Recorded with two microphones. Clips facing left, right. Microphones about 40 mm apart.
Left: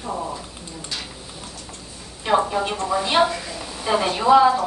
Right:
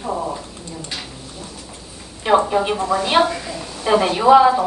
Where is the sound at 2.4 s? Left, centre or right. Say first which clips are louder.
Right 4 dB; centre.